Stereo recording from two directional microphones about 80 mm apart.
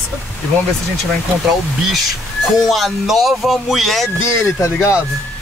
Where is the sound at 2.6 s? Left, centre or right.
Centre.